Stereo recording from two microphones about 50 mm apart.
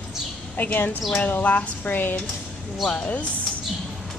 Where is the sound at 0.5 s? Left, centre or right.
Left.